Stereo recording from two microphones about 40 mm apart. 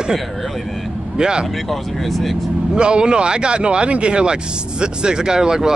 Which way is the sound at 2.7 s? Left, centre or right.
Right.